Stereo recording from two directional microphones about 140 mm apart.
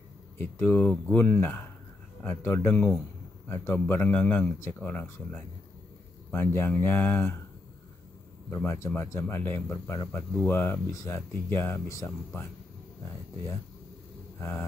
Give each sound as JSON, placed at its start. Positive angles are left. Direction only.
{"t": 0.4, "sound": "a man's voice", "side_deg": 15}
{"t": 6.3, "sound": "a man's voice", "side_deg": 20}
{"t": 8.5, "sound": "speech", "side_deg": 20}
{"t": 14.4, "sound": "a man's voice", "side_deg": 15}